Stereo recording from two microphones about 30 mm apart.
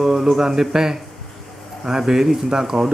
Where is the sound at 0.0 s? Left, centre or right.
Centre.